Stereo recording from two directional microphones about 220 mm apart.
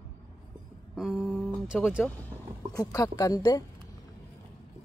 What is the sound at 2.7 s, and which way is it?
Speech, 15° left (ahead or behind).